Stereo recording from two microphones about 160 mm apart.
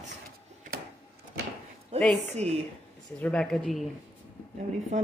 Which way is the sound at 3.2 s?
5° left (ahead or behind).